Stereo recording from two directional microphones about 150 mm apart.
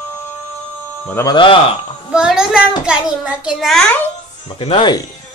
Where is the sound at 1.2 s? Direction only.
30° left (ahead or behind).